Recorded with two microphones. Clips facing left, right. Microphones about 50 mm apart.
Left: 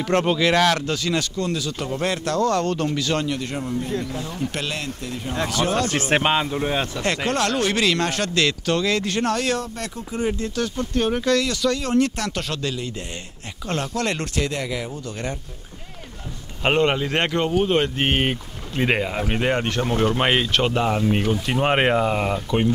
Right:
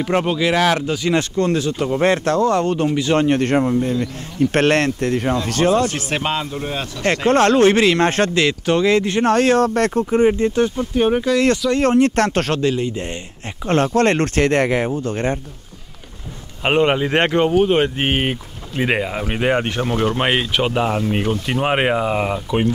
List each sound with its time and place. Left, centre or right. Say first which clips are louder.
0.0 s speech: right 1 dB; centre
1.1 s speech: right 6 dB; right
3.3 s speech: right 10 dB; right
5.5 s speech: right 7 dB; right
5.9 s speech: left 2 dB; left; by 7.1 s centre
7.2 s speech: right 11 dB; right
10.2 s speech: right 6 dB; right
10.8 s speech: right 5 dB; centre
11.7 s speech: right 6 dB; right
12.2 s speech: right 10 dB; right
12.6 s speech: right 8 dB; right
14.9 s speech: right 9 dB; right
16.6 s speech: right 3 dB; centre